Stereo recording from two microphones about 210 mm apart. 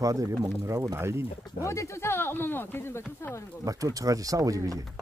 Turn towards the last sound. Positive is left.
turn(degrees=-15)  # may be behind; listen again after turning